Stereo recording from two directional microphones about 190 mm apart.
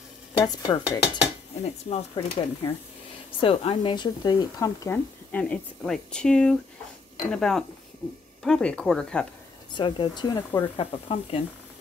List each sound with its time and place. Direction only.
0.5 s dishes: 20° left (ahead or behind)
3.3 s speech: 25° left (ahead or behind); by 9.3 s 5° left (ahead or behind)
9.7 s dishes: 25° left (ahead or behind)